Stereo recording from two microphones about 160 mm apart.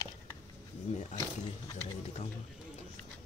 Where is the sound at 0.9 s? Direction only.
45° left (ahead or behind).